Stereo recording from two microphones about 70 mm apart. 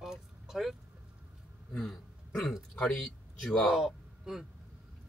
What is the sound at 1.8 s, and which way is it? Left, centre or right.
Throat clearing, centre.